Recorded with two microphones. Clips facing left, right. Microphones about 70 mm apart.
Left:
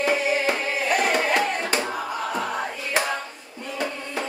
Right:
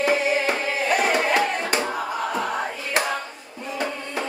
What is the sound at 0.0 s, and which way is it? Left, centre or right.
Music, centre.